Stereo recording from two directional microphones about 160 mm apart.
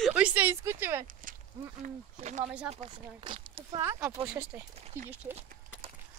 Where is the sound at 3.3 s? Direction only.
30° right (ahead or behind).